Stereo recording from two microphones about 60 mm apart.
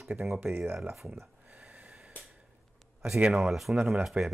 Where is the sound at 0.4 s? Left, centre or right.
Right.